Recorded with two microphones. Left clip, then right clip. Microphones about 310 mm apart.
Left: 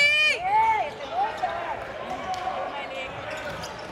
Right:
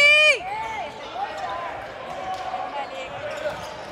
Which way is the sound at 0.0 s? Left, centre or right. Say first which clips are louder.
Right 5 dB; right.